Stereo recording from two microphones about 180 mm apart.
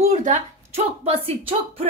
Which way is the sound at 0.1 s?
40° right (ahead or behind).